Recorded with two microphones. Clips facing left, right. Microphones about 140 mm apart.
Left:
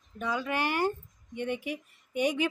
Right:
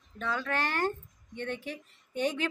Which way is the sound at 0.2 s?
15° left (ahead or behind).